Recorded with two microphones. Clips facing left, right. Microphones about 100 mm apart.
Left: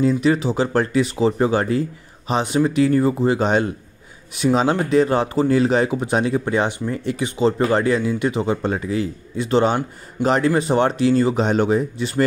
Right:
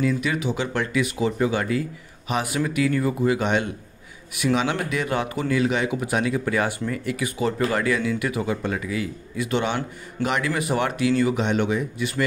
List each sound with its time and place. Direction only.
0.0 s speech: 30° left (ahead or behind)